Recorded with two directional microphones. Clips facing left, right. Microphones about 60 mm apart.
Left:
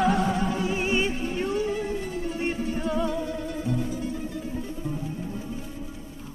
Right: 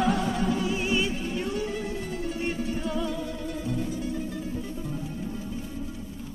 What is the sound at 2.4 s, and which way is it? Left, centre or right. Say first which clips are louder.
Music: left 2 dB; left.